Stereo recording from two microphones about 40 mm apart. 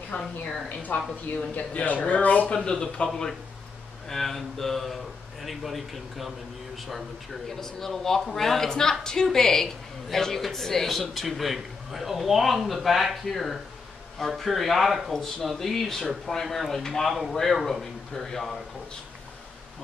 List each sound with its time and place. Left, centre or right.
0.2 s a woman's voice: centre
0.9 s a woman's voice: left
2.5 s speech: centre
4.1 s a woman's voice: centre
17.6 s a woman's voice: centre
18.1 s a man's voice: centre